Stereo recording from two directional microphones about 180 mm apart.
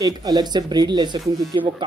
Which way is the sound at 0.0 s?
20° right (ahead or behind).